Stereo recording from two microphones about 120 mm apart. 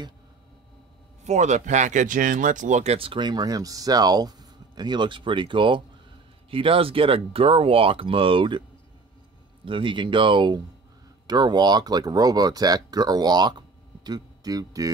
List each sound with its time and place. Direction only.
1.2 s speech: 75° right (ahead or behind); by 8.6 s 45° right (ahead or behind)
9.7 s speech: 45° right (ahead or behind)